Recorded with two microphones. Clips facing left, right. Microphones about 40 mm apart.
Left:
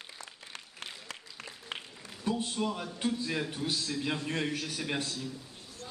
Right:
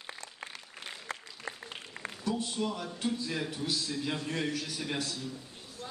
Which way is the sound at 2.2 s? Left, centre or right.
Left.